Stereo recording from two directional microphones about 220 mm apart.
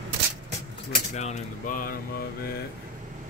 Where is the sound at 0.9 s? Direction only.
30° left (ahead or behind).